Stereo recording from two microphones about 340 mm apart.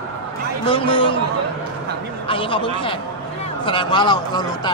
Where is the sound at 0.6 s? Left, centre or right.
Centre.